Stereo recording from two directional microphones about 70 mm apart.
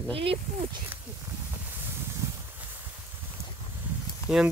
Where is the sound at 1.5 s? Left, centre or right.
Right.